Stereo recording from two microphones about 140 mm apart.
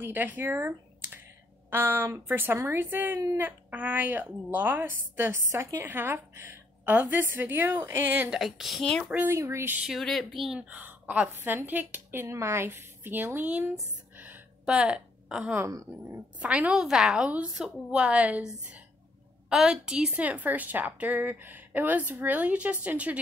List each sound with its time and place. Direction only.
0.0 s a woman's voice: 15° right (ahead or behind)
8.4 s a woman's voice: centre (ahead or behind)
9.1 s a woman's voice: 15° right (ahead or behind)
9.8 s a woman's voice: centre (ahead or behind)
14.1 s gasp: 10° right (ahead or behind)
15.6 s a woman's voice: 20° right (ahead or behind)